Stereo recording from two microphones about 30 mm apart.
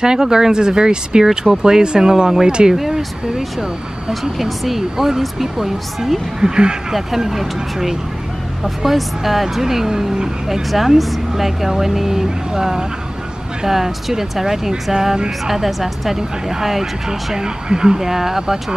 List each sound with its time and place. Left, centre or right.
0.0 s speech: right
2.7 s speech: centre
4.1 s speech: centre
6.4 s speech: right
6.9 s speech: centre
15.4 s speech: centre